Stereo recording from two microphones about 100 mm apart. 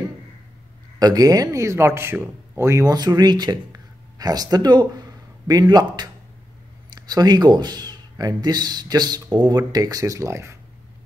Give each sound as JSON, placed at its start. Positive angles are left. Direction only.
{"t": 0.9, "sound": "speech", "side_deg": -40}